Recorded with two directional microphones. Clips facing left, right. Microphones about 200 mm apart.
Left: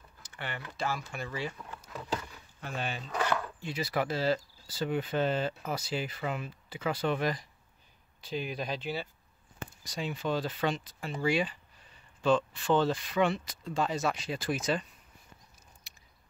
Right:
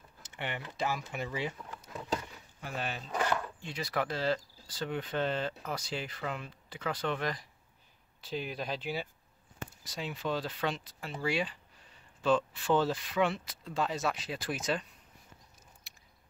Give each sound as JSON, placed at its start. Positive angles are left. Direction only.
{"t": 0.2, "sound": "speech", "side_deg": -20}
{"t": 2.6, "sound": "speech", "side_deg": -5}